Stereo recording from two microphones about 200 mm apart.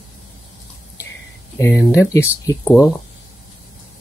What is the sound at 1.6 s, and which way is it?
Speech, 10° left (ahead or behind).